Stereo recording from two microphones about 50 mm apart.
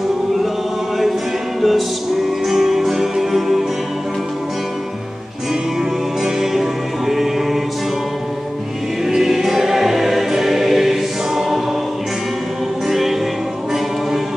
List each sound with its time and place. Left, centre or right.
1.6 s music: centre
6.2 s music: centre
9.0 s choir: centre
12.8 s music: centre